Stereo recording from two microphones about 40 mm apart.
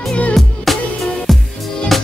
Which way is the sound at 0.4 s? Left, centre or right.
Centre.